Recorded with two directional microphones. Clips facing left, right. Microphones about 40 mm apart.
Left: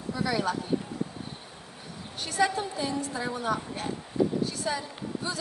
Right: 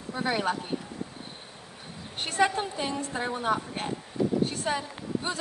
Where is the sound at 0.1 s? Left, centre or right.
Right.